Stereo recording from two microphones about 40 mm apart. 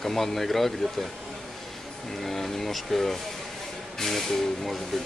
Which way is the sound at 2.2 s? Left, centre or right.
Centre.